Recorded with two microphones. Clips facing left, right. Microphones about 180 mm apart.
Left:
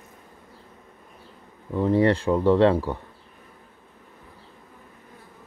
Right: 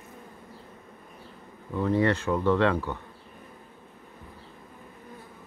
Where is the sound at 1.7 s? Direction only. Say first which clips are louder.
Left 4 dB; 30° left (ahead or behind).